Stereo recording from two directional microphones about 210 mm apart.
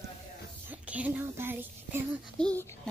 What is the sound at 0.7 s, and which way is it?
Speech, 5° right (ahead or behind).